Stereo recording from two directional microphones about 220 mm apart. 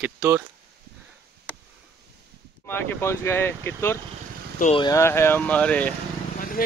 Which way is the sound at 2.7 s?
10° left (ahead or behind).